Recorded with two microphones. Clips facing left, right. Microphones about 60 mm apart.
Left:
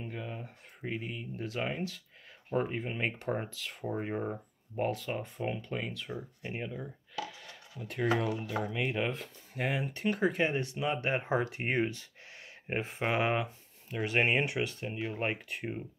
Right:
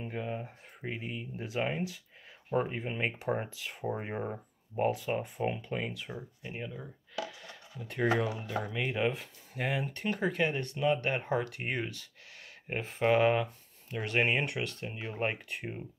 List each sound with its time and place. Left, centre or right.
0.0 s speech: centre
0.7 s speech: centre
2.5 s speech: centre
6.4 s speech: centre